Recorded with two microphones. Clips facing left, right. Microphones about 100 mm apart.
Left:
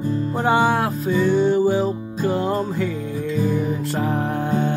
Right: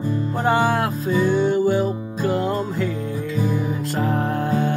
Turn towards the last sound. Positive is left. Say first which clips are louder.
# even
turn(degrees=20)  # may be behind; listen again after turning